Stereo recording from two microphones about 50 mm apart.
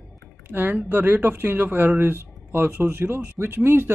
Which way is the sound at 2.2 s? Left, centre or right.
Right.